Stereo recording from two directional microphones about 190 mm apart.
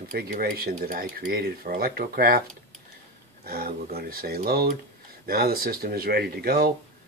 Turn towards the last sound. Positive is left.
turn(degrees=-55)  # may be behind; listen again after turning